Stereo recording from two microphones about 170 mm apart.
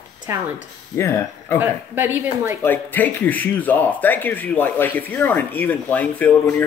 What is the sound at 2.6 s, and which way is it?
Speech, 10° left (ahead or behind).